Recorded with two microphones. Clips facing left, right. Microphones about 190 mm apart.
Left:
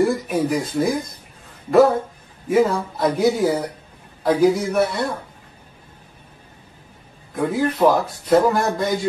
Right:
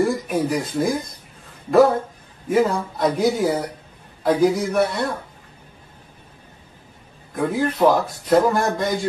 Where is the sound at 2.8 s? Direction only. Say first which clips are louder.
Left 1 dB; 10° left (ahead or behind).